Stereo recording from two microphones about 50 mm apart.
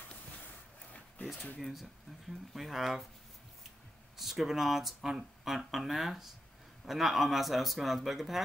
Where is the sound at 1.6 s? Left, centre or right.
Centre.